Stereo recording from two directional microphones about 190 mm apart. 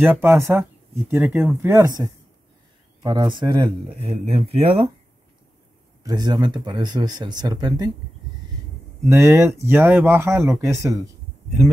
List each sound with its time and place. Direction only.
0.0 s speech: 10° right (ahead or behind)
1.6 s speech: 15° right (ahead or behind); by 4.8 s 30° right (ahead or behind)
6.0 s speech: 20° right (ahead or behind)
9.1 s speech: 15° right (ahead or behind)